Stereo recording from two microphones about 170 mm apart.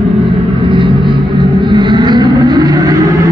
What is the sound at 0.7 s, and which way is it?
Vehicle, 30° right (ahead or behind).